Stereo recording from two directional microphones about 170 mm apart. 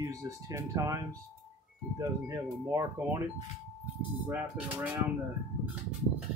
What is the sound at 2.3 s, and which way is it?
Speech, 15° right (ahead or behind).